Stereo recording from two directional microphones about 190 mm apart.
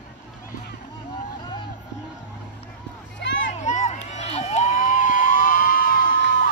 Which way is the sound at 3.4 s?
40° left (ahead or behind).